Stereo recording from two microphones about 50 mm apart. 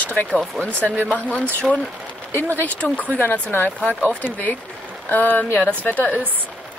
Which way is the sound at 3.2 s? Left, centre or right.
Left.